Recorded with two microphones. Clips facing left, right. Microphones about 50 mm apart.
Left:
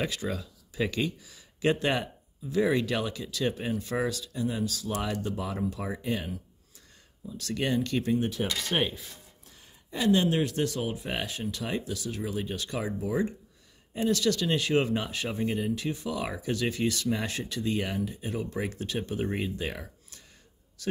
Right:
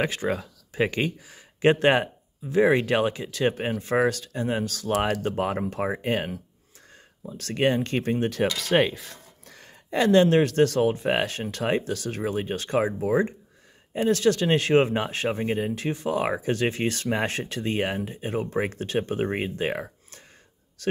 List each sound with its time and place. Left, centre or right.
0.0 s speech: right
8.5 s speech: right